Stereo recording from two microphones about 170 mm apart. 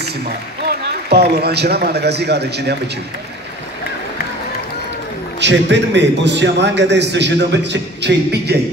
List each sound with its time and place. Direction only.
0.7 s a man's voice: 70° right (ahead or behind)
5.4 s a man's voice: 90° right